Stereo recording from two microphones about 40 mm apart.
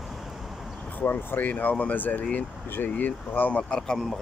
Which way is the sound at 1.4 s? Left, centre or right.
Left.